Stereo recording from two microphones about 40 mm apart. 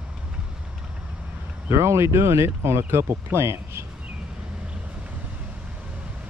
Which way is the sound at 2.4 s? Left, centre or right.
Right.